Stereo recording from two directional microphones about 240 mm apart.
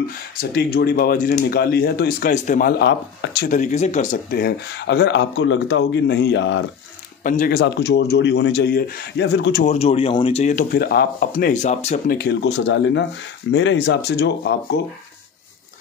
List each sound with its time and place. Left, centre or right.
0.4 s speech: left
2.8 s speech: left
3.4 s speech: left
7.2 s speech: left
9.7 s speech: left